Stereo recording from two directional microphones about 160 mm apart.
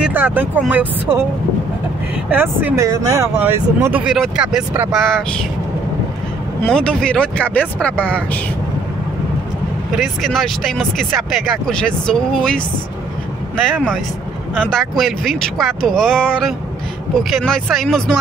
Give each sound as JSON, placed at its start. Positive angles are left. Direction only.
{"t": 0.1, "sound": "speech", "side_deg": -10}
{"t": 2.2, "sound": "speech", "side_deg": -10}
{"t": 6.6, "sound": "speech", "side_deg": 5}
{"t": 9.9, "sound": "speech", "side_deg": 0}
{"t": 14.5, "sound": "speech", "side_deg": 5}